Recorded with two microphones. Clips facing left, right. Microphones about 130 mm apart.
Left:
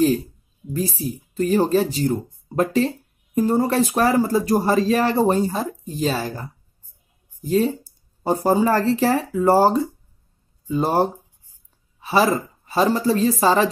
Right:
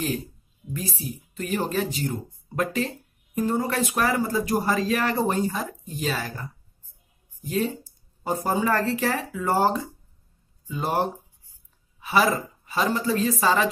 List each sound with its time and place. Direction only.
0.7 s speech: 35° left (ahead or behind)